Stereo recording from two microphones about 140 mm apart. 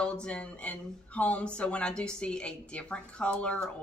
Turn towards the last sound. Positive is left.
turn(degrees=5)  # may be behind; listen again after turning